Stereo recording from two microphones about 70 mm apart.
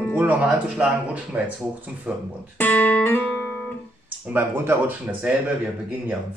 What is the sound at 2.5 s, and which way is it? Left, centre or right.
Speech, left.